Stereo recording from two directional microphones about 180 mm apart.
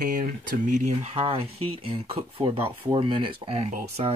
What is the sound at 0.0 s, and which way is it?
Speech, 50° right (ahead or behind).